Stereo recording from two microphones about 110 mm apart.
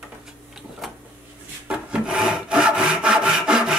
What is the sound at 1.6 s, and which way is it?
Sawing, 10° right (ahead or behind).